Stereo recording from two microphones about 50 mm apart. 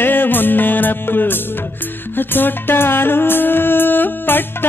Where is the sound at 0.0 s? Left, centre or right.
Left.